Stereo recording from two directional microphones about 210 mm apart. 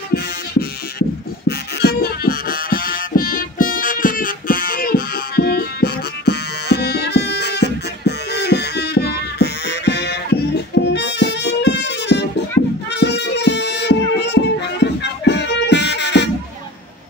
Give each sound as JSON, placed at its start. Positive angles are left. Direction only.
{"t": 0.1, "sound": "music", "side_deg": 45}
{"t": 10.7, "sound": "harmonica", "side_deg": 55}
{"t": 12.6, "sound": "music", "side_deg": 45}